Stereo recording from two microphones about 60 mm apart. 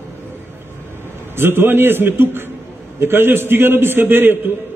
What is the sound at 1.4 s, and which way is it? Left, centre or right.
A man's voice, right.